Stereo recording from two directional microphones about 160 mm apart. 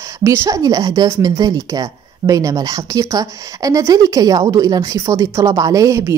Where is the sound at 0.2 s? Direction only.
15° right (ahead or behind).